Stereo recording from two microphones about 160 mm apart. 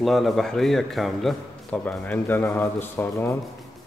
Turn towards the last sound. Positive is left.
turn(degrees=15)  # may be behind; listen again after turning